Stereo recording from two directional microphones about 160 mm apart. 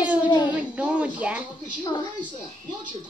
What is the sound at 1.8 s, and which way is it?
Speech, 30° left (ahead or behind).